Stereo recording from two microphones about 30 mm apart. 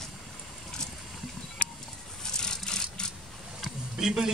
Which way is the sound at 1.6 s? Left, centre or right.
Left.